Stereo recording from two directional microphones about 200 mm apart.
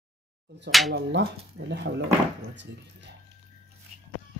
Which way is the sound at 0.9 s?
60° right (ahead or behind).